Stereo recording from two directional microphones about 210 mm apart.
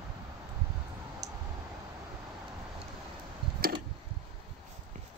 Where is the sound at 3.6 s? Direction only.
45° right (ahead or behind).